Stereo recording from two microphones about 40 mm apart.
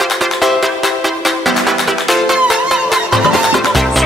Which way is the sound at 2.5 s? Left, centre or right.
Centre.